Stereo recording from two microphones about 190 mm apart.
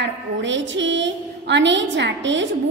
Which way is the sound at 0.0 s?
70° right (ahead or behind).